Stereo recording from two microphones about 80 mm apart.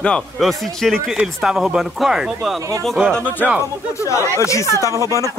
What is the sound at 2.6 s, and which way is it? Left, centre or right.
Speech, right.